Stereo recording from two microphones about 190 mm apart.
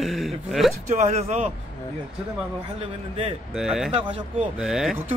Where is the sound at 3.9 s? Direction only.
30° right (ahead or behind).